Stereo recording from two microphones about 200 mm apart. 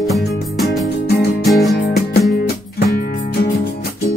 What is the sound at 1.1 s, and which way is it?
Music, 55° left (ahead or behind).